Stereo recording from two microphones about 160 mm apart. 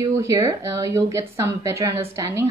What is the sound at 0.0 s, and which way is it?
Speech, 20° right (ahead or behind).